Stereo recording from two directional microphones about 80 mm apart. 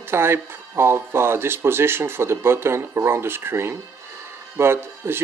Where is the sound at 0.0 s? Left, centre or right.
Right.